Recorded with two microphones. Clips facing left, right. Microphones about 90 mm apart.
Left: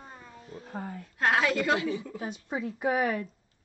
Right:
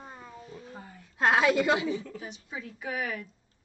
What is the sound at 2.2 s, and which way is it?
Speech, 50° left (ahead or behind).